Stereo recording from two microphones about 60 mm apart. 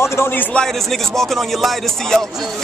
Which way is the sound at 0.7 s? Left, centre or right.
Centre.